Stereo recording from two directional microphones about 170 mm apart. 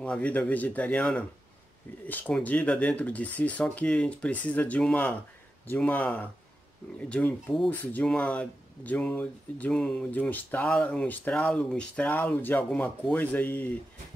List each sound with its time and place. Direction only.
0.0 s speech: 5° left (ahead or behind)